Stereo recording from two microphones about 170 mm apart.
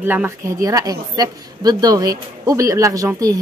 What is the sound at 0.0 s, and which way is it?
A woman's voice, 15° right (ahead or behind).